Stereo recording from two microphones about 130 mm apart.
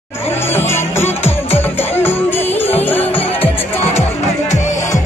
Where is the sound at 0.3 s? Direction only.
20° left (ahead or behind).